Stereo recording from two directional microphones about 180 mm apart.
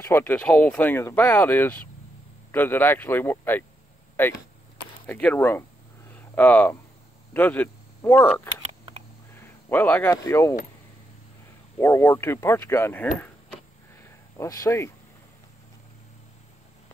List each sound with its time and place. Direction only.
0.0 s speech: 10° left (ahead or behind)
5.0 s a sound: 10° left (ahead or behind)
7.3 s speech: 10° left (ahead or behind)
9.3 s a sound: 10° left (ahead or behind)
10.1 s speech: 15° left (ahead or behind)
11.8 s speech: 15° left (ahead or behind)